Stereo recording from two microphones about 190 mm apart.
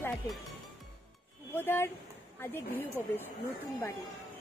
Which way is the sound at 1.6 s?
10° left (ahead or behind).